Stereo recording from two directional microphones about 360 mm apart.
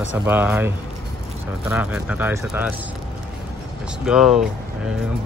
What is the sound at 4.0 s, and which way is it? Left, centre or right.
Speech, centre.